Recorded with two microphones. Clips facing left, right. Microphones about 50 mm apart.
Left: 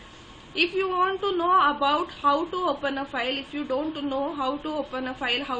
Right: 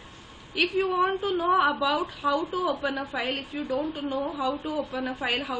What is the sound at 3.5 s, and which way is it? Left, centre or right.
A woman's voice, centre.